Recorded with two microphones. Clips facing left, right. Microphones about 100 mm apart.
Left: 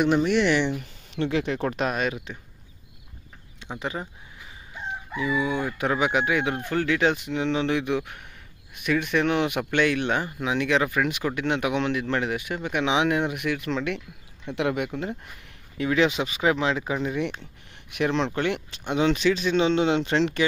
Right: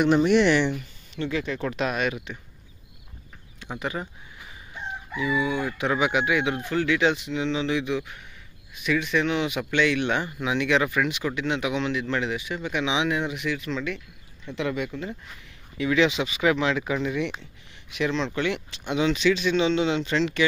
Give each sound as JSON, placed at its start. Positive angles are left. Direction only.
{"t": 0.2, "sound": "speech", "side_deg": -5}
{"t": 0.5, "sound": "speech", "side_deg": 15}
{"t": 1.1, "sound": "speech", "side_deg": 70}
{"t": 1.6, "sound": "speech", "side_deg": 40}
{"t": 3.6, "sound": "a sound", "side_deg": 25}
{"t": 5.1, "sound": "a man's voice", "side_deg": 35}
{"t": 15.8, "sound": "speech", "side_deg": 40}
{"t": 17.9, "sound": "a man's voice", "side_deg": 55}